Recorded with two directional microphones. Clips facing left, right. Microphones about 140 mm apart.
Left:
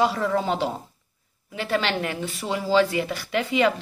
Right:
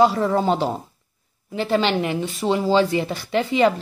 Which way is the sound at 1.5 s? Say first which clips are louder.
Right 5 dB; 25° right (ahead or behind).